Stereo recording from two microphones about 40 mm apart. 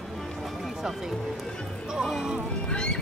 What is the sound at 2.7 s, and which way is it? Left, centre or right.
Music, left.